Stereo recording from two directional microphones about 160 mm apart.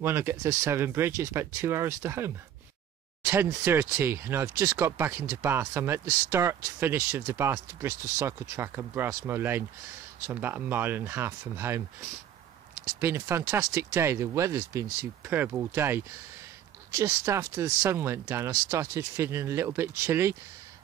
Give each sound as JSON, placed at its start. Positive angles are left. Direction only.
{"t": 0.0, "sound": "speech", "side_deg": -15}
{"t": 3.4, "sound": "speech", "side_deg": -15}
{"t": 13.0, "sound": "speech", "side_deg": -15}